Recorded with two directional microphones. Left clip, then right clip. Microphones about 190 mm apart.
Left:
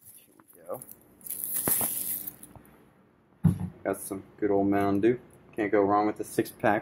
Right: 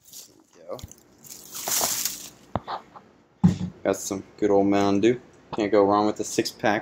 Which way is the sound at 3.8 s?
25° right (ahead or behind).